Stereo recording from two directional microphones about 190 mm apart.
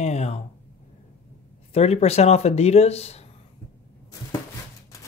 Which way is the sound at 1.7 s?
35° left (ahead or behind).